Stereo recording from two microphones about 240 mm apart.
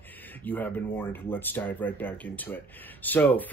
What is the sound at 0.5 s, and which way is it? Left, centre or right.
Speech, centre.